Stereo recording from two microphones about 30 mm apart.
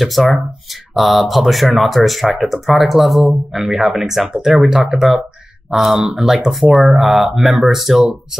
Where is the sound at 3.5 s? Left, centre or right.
Centre.